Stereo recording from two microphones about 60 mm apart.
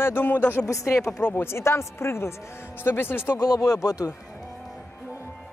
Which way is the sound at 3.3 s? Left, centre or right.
Left.